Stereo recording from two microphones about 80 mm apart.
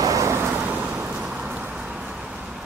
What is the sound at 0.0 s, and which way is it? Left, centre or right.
Vehicle, right.